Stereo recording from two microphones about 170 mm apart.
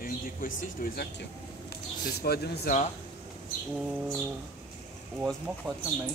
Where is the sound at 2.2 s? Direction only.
70° left (ahead or behind).